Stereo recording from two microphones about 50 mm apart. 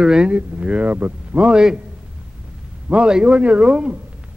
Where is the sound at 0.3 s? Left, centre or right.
Right.